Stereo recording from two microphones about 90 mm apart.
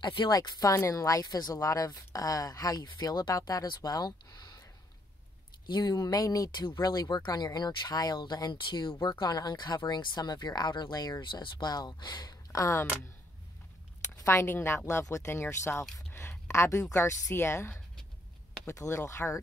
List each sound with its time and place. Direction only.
0.0 s speech: 60° left (ahead or behind)
0.3 s speech: 45° left (ahead or behind)
5.7 s speech: 50° left (ahead or behind)
12.5 s speech: 35° left (ahead or behind)
14.0 s a woman's voice: 30° left (ahead or behind)